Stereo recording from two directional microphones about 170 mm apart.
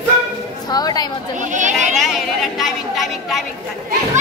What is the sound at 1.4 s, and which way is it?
Speech, 45° right (ahead or behind).